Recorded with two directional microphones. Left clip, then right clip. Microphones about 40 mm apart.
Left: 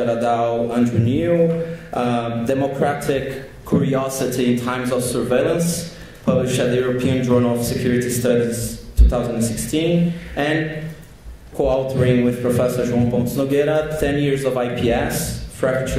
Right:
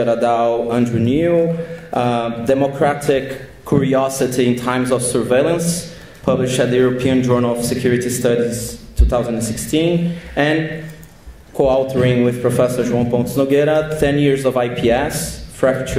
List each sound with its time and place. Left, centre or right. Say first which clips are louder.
0.0 s a man's voice: right 4 dB; centre